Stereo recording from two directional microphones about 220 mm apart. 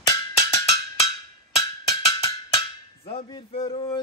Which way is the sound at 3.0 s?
25° left (ahead or behind).